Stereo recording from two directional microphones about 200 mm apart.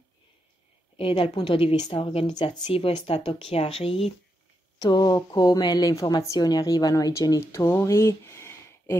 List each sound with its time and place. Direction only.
0.9 s a woman's voice: 25° left (ahead or behind)